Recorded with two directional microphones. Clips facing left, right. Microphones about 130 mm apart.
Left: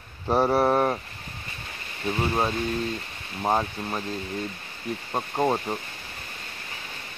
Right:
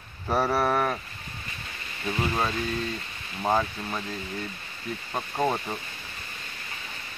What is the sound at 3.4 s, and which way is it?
Speech, 25° left (ahead or behind).